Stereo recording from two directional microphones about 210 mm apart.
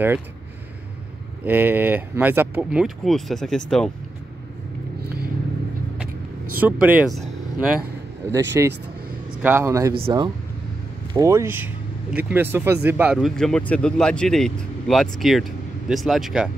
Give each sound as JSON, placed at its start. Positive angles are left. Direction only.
{"t": 1.4, "sound": "speech", "side_deg": -10}
{"t": 5.0, "sound": "vehicle", "side_deg": -45}
{"t": 6.6, "sound": "speech", "side_deg": -5}
{"t": 8.3, "sound": "a man's voice", "side_deg": -10}
{"t": 9.9, "sound": "speech", "side_deg": -25}
{"t": 11.1, "sound": "speech", "side_deg": -15}